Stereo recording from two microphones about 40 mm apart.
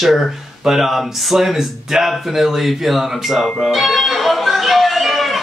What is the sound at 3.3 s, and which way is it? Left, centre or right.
Speech, centre.